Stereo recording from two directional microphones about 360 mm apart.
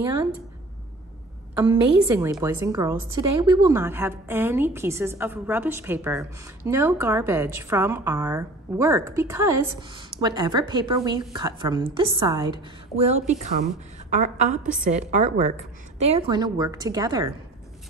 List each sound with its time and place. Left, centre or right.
0.0 s a woman's voice: centre
1.6 s a woman's voice: centre
14.1 s a woman's voice: centre